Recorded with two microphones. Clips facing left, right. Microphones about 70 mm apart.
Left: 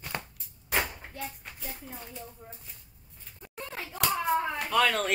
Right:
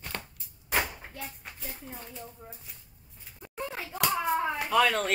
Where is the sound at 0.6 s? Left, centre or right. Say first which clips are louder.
Even; centre.